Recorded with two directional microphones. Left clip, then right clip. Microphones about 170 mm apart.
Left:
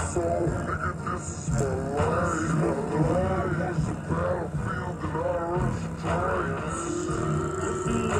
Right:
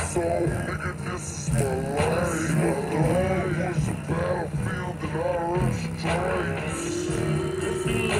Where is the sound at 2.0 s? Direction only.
10° right (ahead or behind).